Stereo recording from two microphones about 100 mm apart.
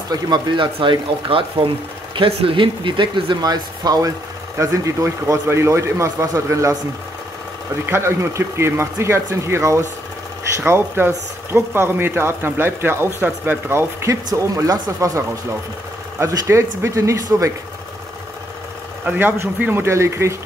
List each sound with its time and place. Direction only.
0.1 s speech: 50° right (ahead or behind); by 6.8 s 30° right (ahead or behind)
7.8 s speech: 25° right (ahead or behind)
19.0 s speech: 20° right (ahead or behind)